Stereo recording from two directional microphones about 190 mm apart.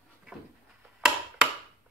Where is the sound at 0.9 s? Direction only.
Centre (ahead or behind).